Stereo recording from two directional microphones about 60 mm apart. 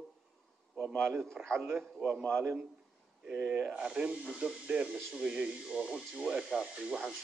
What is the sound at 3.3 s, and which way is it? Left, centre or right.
Speech, centre.